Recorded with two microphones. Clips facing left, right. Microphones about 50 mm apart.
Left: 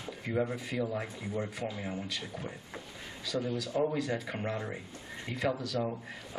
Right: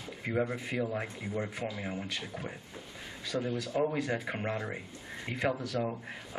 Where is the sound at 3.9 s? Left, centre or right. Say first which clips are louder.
Even; right.